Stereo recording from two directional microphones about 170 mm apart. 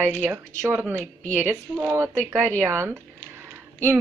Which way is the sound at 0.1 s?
15° right (ahead or behind).